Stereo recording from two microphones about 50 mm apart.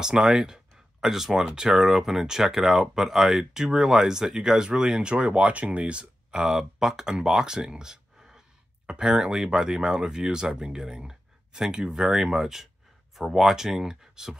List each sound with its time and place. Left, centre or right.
0.0 s speech: centre
6.4 s speech: centre